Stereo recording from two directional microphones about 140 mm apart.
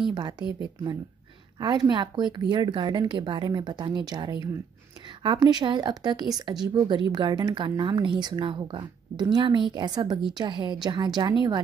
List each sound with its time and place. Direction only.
0.1 s speech: 30° right (ahead or behind)
1.6 s speech: 30° right (ahead or behind)